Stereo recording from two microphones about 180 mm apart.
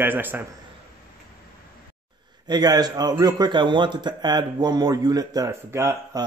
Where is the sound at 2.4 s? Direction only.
20° right (ahead or behind).